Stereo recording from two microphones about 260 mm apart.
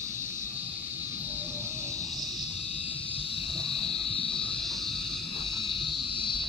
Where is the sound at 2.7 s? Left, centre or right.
Left.